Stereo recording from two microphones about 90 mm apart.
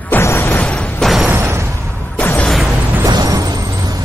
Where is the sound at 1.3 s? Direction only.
20° right (ahead or behind).